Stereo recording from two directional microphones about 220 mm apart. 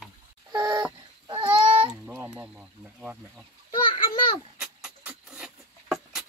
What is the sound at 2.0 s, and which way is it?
Chicken, 10° right (ahead or behind).